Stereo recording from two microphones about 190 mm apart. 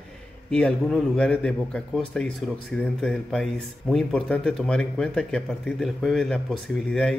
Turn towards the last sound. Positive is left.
turn(degrees=5)  # may be behind; listen again after turning